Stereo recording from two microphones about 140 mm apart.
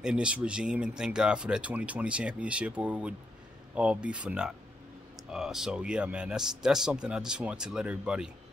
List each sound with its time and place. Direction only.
0.0 s a man's voice: 5° right (ahead or behind)